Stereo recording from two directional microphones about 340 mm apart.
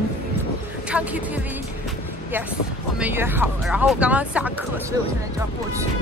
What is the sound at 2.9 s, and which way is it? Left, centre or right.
Speech, centre.